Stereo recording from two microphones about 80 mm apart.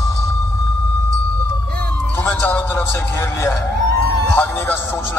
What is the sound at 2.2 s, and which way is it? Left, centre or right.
A man's voice, left.